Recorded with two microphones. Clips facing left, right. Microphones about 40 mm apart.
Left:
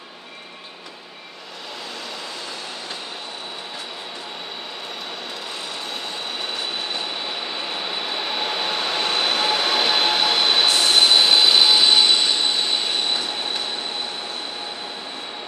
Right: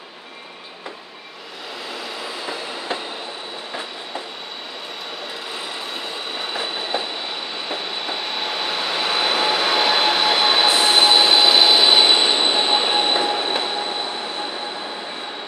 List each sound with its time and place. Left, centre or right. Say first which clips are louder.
6.4 s train: right 3 dB; centre
7.5 s vehicle: even; centre
10.8 s train: right 2 dB; centre